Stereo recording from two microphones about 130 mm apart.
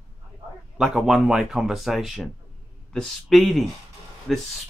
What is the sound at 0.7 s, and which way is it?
A woman's voice, centre (ahead or behind).